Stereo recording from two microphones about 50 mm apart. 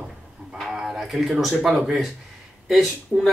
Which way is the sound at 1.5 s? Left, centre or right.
Centre.